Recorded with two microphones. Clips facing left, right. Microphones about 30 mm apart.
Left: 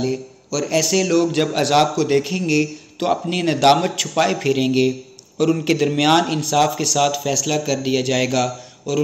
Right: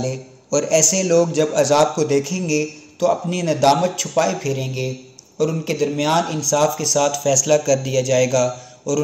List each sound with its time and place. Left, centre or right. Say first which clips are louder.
0.1 s a man's voice: right 3 dB; left